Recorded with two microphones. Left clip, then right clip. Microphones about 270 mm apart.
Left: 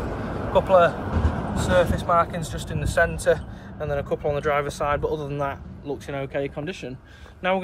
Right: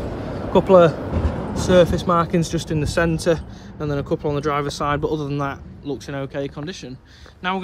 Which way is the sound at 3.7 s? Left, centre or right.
Right.